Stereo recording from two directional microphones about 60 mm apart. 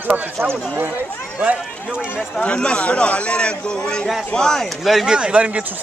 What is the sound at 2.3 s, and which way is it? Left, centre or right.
Speech, centre.